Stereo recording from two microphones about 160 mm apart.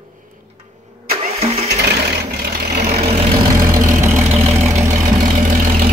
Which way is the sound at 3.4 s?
20° right (ahead or behind).